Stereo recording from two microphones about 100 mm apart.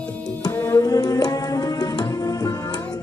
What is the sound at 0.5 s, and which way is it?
Tabla, 35° left (ahead or behind).